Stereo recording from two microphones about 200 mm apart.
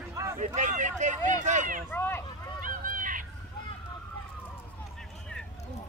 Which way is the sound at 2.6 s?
40° right (ahead or behind).